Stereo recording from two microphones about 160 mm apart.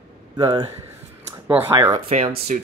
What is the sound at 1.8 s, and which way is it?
Speech, 25° right (ahead or behind).